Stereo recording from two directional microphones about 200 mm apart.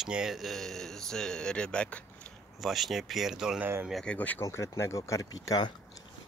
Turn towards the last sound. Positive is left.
turn(degrees=20)  # may be behind; listen again after turning